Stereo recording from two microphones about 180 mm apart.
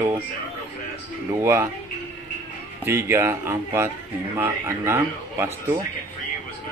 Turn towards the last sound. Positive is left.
turn(degrees=-15)  # may be behind; listen again after turning